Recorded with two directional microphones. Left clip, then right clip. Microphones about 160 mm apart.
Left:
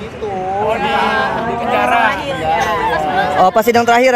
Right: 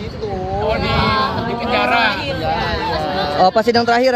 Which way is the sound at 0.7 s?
55° right (ahead or behind).